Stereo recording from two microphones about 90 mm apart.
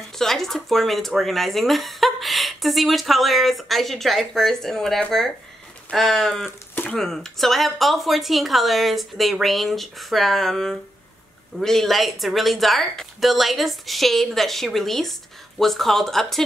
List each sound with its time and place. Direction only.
0.2 s speech: 5° left (ahead or behind)
6.7 s a sound: 20° left (ahead or behind)
7.0 s speech: 5° left (ahead or behind)